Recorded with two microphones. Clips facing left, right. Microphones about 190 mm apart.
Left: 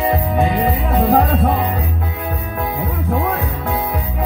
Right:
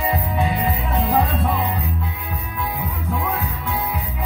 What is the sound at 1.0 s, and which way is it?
Music, 50° left (ahead or behind).